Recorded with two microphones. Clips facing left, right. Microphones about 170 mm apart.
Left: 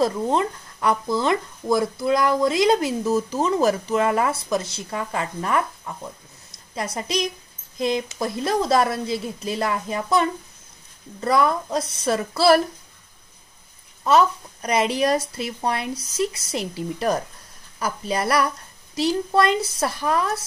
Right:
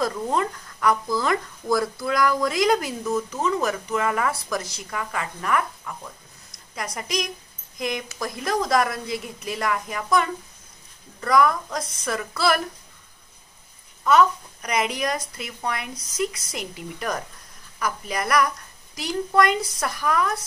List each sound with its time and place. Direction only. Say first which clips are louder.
0.0 s speech: left 3 dB; 25° left (ahead or behind)
14.0 s a woman's voice: even; 30° left (ahead or behind)